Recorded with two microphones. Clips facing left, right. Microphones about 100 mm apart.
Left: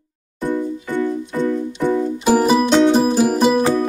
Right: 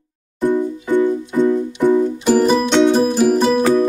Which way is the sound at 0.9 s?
20° right (ahead or behind).